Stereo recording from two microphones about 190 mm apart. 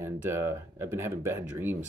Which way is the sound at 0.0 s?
10° right (ahead or behind).